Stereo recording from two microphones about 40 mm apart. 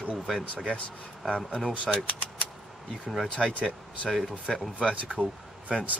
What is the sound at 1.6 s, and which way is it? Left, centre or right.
Speech, centre.